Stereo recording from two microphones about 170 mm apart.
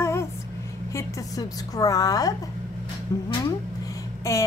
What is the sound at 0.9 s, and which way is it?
A woman's voice, 20° left (ahead or behind).